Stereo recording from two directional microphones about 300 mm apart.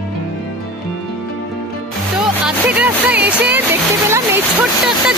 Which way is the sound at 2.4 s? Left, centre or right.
Centre.